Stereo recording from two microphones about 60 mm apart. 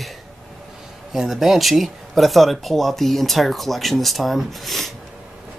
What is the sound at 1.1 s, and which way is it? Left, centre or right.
Speech, centre.